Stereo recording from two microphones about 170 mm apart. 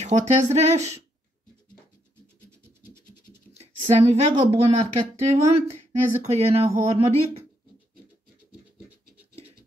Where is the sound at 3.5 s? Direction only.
35° right (ahead or behind).